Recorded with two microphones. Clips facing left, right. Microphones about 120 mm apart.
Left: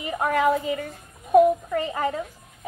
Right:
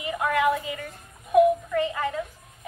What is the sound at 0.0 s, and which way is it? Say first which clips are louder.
Speech: left 2 dB; 40° left (ahead or behind).